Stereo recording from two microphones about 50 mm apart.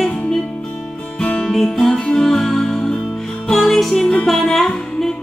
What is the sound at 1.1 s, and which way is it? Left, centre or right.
Music, centre.